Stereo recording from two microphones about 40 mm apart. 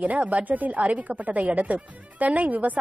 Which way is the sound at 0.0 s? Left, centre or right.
Right.